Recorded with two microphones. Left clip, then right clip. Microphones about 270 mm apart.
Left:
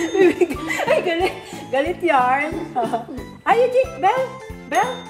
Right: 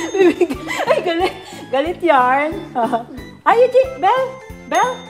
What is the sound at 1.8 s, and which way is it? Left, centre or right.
Speech, right.